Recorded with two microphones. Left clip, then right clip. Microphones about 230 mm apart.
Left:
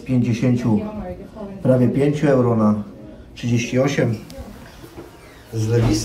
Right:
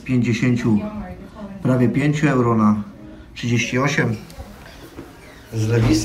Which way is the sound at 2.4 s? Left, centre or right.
Right.